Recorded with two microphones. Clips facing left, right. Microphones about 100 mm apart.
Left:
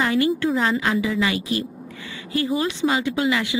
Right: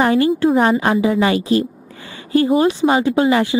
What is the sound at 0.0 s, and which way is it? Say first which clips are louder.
Speech: right 6 dB; 35° right (ahead or behind).